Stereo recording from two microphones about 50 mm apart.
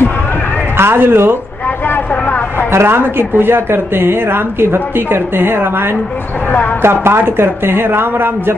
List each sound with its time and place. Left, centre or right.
0.7 s a man's voice: right
2.7 s a woman's voice: right
6.8 s a woman's voice: right